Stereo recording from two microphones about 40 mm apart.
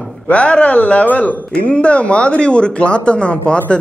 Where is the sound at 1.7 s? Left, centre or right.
Left.